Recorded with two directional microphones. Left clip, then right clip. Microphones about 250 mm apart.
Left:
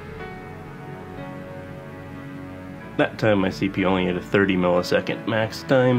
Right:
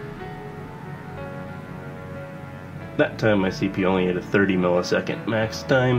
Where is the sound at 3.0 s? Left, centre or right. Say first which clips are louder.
Even; left.